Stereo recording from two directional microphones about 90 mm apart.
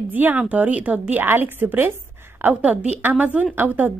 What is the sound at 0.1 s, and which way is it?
A woman's voice, 20° right (ahead or behind).